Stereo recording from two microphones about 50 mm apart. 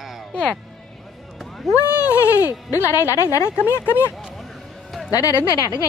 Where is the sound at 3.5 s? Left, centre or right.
Left.